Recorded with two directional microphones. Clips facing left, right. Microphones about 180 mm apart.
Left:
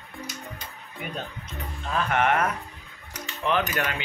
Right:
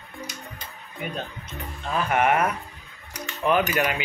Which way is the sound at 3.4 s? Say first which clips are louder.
Right 4 dB; 10° right (ahead or behind).